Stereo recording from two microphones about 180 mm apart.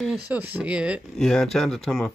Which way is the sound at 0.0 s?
5° right (ahead or behind).